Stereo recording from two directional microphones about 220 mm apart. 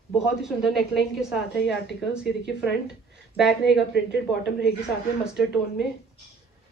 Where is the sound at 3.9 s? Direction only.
55° left (ahead or behind).